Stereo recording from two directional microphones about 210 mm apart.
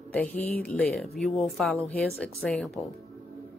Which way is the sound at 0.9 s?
Centre (ahead or behind).